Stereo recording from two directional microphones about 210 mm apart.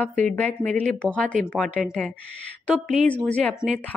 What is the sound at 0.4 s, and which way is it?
A woman's voice, 5° left (ahead or behind).